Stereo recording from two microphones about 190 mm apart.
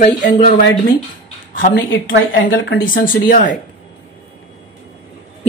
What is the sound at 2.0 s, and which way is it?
Speech, 65° left (ahead or behind).